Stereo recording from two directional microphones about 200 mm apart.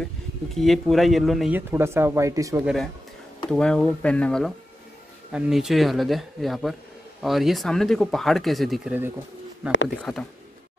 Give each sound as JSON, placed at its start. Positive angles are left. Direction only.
{"t": 0.6, "sound": "speech", "side_deg": 0}
{"t": 2.6, "sound": "speech", "side_deg": 0}